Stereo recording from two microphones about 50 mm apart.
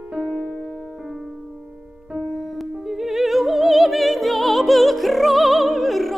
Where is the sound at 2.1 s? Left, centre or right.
Centre.